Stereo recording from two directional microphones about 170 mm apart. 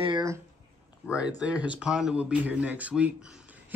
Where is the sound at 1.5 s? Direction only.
5° right (ahead or behind).